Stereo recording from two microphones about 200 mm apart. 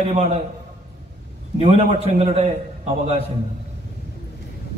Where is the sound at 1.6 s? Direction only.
30° right (ahead or behind).